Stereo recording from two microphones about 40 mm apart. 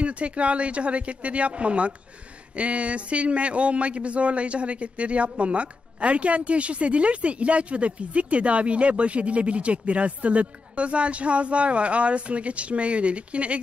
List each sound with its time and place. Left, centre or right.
0.0 s speech: right